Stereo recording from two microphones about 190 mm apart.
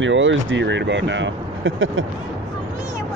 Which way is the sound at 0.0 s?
80° right.